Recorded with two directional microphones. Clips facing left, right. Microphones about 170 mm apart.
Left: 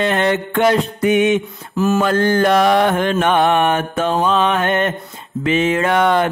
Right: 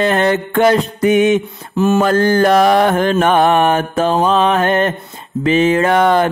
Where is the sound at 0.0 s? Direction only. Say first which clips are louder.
Right 3 dB; 40° right (ahead or behind).